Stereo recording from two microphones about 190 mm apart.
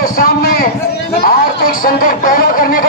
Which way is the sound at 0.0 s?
50° left (ahead or behind).